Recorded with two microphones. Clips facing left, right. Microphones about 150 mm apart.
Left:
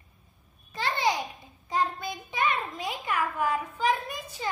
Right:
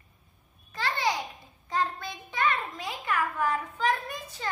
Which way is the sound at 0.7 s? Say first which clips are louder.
Left 2 dB; 20° left (ahead or behind).